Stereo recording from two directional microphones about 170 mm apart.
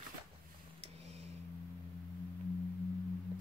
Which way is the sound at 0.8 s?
40° right (ahead or behind).